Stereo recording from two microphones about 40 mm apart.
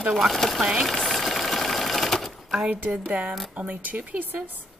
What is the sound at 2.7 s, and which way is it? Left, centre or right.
A woman's voice, right.